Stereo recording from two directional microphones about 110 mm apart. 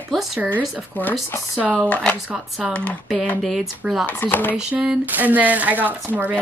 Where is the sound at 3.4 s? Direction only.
Centre (ahead or behind).